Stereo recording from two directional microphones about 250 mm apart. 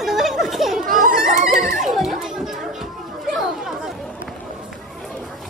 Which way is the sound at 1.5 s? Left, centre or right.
Centre.